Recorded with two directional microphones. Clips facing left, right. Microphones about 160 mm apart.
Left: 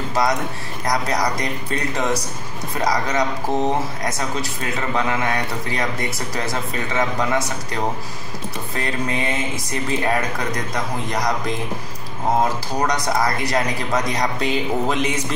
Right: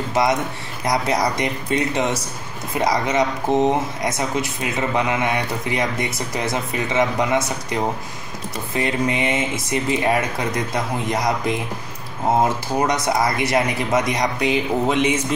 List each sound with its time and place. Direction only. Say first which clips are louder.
0.1 s a man's voice: right 2 dB; 20° right (ahead or behind)
12.8 s a man's voice: even; 25° right (ahead or behind)
14.9 s a man's voice: right 3 dB; centre (ahead or behind)